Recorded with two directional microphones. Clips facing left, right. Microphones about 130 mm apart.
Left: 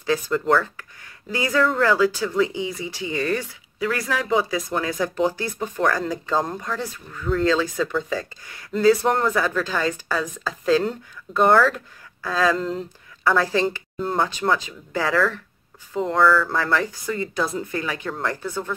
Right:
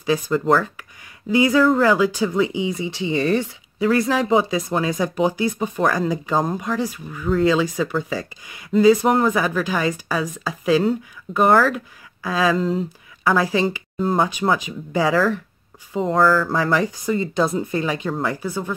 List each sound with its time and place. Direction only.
0.0 s speech: 10° right (ahead or behind)
16.4 s speech: 15° right (ahead or behind)